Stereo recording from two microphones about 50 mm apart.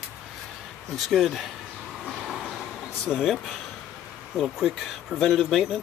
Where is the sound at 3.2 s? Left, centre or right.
Centre.